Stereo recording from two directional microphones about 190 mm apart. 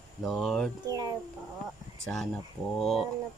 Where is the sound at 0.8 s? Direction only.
20° right (ahead or behind).